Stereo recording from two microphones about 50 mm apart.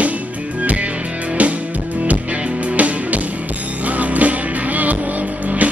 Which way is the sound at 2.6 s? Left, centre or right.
Right.